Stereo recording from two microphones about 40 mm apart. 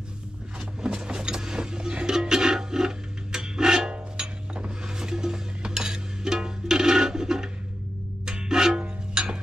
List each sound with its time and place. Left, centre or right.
0.8 s music: right